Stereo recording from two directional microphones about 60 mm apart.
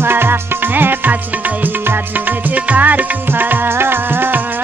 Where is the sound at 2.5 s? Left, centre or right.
Right.